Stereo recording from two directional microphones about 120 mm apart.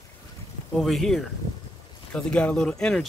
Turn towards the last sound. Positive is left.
turn(degrees=5)  # may be behind; listen again after turning